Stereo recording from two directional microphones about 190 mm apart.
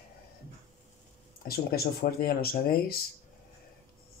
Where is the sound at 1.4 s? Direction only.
55° left (ahead or behind).